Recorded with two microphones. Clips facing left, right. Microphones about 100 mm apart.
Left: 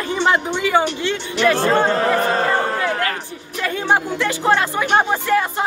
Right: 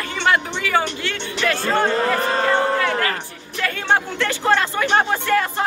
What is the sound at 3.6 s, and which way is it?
Speech, 15° left (ahead or behind).